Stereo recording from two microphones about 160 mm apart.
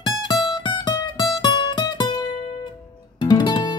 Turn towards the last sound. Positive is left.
turn(degrees=25)  # may be behind; listen again after turning